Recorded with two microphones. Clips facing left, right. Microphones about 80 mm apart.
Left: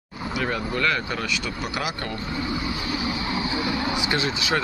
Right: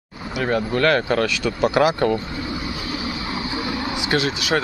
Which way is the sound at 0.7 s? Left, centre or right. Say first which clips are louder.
Right 8 dB; right.